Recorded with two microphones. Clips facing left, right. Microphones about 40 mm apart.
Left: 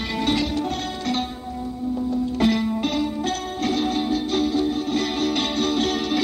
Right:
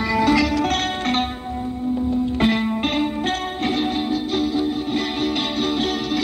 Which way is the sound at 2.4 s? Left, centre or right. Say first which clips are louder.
Left 1 dB; right.